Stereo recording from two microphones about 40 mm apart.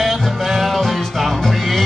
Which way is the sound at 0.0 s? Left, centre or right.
Centre.